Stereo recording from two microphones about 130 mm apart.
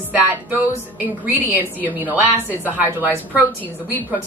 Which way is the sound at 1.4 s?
15° right (ahead or behind).